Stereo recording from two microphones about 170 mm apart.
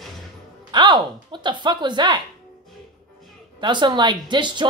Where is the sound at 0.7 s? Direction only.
25° right (ahead or behind).